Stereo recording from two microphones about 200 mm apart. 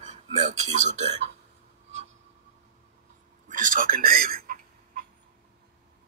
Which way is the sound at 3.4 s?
40° right (ahead or behind).